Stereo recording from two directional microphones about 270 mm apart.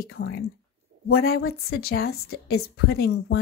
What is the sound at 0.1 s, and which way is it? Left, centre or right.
Speech, left.